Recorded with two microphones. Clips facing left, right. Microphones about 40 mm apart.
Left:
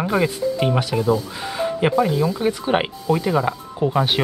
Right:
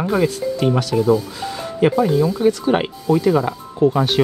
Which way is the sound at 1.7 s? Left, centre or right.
Centre.